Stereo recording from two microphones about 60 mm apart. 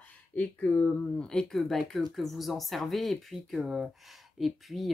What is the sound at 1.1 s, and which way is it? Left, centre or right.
Speech, centre.